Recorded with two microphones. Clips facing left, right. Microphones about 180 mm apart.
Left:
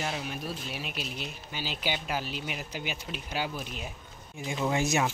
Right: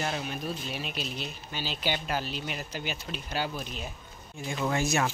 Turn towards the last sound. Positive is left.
turn(degrees=20)  # may be behind; listen again after turning